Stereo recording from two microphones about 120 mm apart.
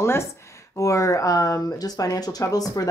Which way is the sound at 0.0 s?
20° left (ahead or behind).